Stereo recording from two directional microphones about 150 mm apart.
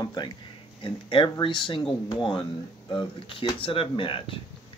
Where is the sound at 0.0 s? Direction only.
30° left (ahead or behind).